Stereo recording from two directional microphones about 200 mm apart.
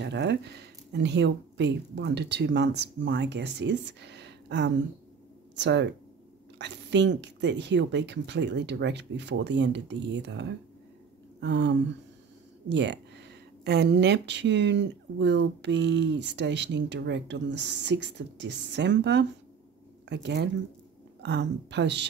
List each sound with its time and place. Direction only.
0.0 s speech: 60° right (ahead or behind)
11.3 s a sound: 60° right (ahead or behind)
12.6 s speech: 60° right (ahead or behind)